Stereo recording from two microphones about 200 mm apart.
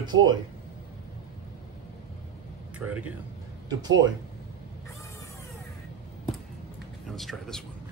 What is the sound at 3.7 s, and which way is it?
Speech, 20° right (ahead or behind).